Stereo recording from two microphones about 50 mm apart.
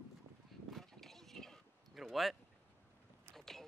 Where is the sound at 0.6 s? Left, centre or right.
Centre.